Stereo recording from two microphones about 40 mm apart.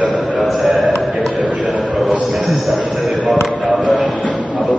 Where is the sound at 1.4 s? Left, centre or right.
Right.